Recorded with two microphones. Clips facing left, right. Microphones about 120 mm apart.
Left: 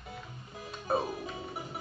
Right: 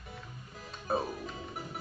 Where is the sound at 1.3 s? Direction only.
5° left (ahead or behind).